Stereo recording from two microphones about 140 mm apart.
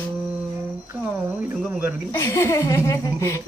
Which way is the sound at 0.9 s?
10° right (ahead or behind).